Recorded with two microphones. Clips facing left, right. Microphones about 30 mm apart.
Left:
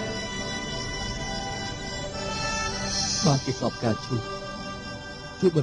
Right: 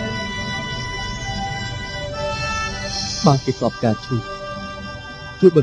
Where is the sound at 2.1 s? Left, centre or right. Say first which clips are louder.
Right 7 dB; centre.